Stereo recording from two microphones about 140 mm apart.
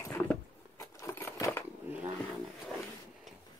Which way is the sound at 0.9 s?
20° left (ahead or behind).